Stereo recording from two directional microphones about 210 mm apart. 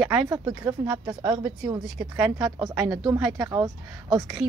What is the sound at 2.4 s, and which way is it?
Speech, 15° right (ahead or behind).